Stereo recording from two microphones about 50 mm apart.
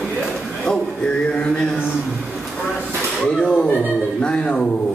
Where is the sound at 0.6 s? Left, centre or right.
Centre.